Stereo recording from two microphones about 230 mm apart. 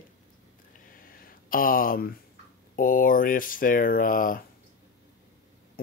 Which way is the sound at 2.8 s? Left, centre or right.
Left.